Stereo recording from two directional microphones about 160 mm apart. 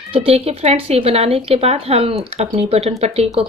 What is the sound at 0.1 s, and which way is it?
A woman's voice, 40° right (ahead or behind).